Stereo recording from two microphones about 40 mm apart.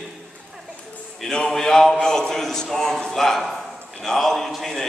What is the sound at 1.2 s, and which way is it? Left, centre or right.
A man's voice, centre.